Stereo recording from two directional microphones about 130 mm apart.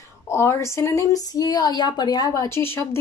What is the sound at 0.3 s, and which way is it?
Speech, 20° left (ahead or behind).